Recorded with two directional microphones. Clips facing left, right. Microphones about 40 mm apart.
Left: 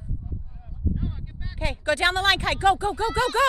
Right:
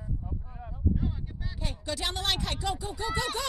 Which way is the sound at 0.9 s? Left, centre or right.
Centre.